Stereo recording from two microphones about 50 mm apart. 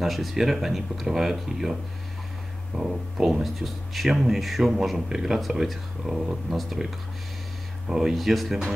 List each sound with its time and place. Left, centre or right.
0.0 s speech: centre
6.5 s speech: centre
7.9 s speech: centre